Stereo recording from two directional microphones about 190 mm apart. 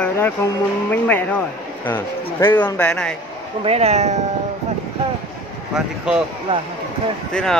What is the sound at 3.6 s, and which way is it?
Speech, 35° right (ahead or behind).